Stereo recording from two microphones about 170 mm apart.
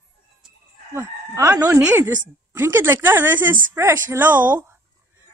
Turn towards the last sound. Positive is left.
turn(degrees=-10)  # may be behind; listen again after turning